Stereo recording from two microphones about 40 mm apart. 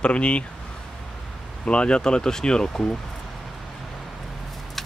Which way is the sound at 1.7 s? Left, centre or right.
Left.